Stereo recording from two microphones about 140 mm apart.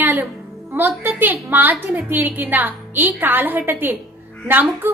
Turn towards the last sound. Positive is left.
turn(degrees=-15)  # may be behind; listen again after turning